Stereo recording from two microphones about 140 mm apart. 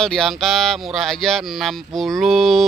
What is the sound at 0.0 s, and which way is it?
Speech, 5° left (ahead or behind).